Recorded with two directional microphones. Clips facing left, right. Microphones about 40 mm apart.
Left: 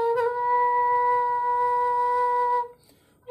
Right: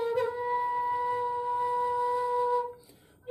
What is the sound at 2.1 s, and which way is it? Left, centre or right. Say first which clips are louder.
Flute: left 6 dB; left.